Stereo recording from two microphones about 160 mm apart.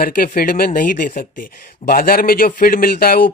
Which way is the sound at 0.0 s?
60° left (ahead or behind).